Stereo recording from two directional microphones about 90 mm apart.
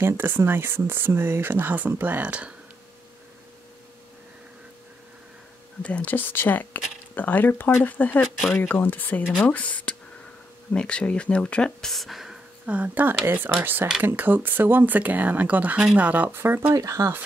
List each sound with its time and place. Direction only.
0.0 s speech: 25° right (ahead or behind)
5.8 s speech: 15° left (ahead or behind)
8.4 s speech: 5° left (ahead or behind)
8.6 s speech: 20° left (ahead or behind); by 12.4 s centre (ahead or behind)
12.6 s speech: 15° right (ahead or behind)
16.7 s speech: 35° right (ahead or behind)